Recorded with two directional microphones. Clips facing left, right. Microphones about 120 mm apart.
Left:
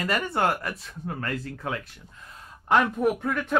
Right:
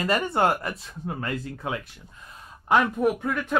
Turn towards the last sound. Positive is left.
turn(degrees=0)  # may be behind; listen again after turning